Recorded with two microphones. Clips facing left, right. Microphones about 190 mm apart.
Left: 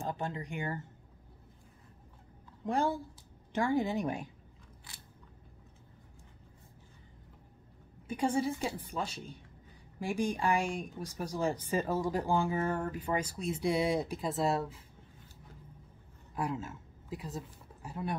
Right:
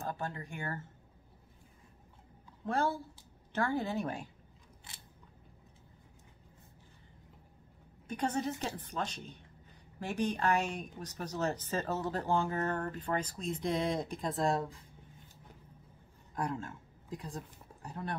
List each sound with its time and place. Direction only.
0.0 s speech: 15° left (ahead or behind)
2.6 s speech: 15° left (ahead or behind)
4.9 s a sound: 20° right (ahead or behind)
8.1 s speech: 10° left (ahead or behind)
16.3 s speech: 5° left (ahead or behind)